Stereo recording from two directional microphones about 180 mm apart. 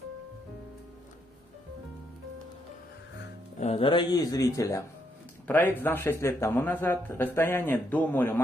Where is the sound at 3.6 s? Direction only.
30° left (ahead or behind).